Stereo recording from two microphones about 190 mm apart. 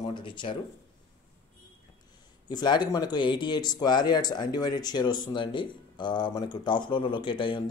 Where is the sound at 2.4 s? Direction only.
25° left (ahead or behind).